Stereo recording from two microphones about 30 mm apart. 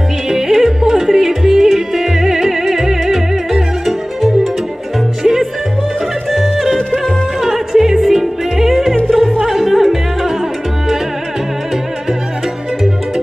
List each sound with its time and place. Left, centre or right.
0.3 s music: centre
5.2 s music: centre
7.7 s yodeling: centre
9.1 s music: centre